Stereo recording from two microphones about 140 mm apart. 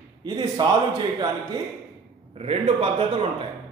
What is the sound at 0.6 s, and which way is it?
Speech, 30° right (ahead or behind).